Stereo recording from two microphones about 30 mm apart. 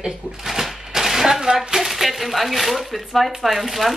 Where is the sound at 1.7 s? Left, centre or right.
Centre.